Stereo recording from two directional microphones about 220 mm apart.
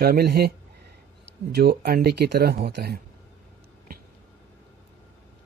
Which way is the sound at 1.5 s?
45° right (ahead or behind).